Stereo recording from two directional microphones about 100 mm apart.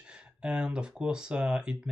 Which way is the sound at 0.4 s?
10° right (ahead or behind).